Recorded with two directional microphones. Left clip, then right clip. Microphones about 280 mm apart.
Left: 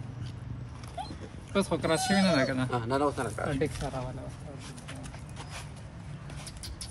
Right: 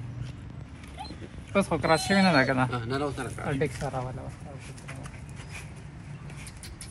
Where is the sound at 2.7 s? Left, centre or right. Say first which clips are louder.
Left 2 dB; left.